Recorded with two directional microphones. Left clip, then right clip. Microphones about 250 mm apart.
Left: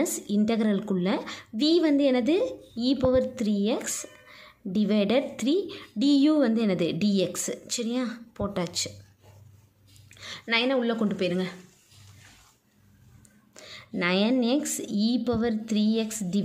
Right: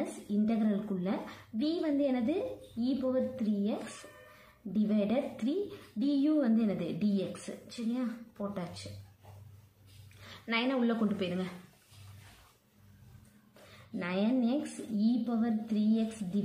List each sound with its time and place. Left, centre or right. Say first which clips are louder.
0.3 s a woman's voice: left 4 dB; left
10.2 s a woman's voice: left 8 dB; left
13.9 s a woman's voice: left 8 dB; left